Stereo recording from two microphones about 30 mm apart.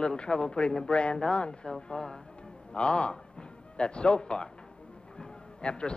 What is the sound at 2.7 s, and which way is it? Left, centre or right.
A man's voice, left.